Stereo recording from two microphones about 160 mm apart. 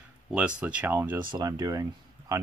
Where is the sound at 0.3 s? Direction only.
5° right (ahead or behind).